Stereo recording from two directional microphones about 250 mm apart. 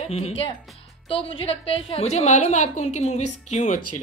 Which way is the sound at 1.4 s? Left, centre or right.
Left.